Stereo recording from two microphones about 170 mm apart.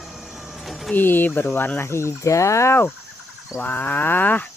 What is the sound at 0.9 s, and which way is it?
Speech, 10° left (ahead or behind).